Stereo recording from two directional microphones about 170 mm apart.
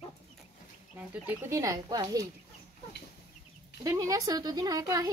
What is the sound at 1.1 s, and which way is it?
Speech, 15° right (ahead or behind).